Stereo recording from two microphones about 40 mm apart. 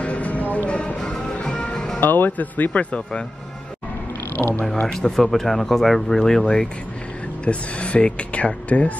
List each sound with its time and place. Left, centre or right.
0.0 s a sound: left
0.7 s music: left
2.0 s speech: left
2.7 s speech: left
4.4 s speech: left
4.9 s speech: centre
7.4 s speech: left